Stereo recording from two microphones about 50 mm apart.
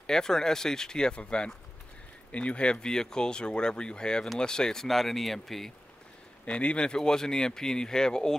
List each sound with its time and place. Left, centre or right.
0.0 s speech: centre
6.4 s speech: left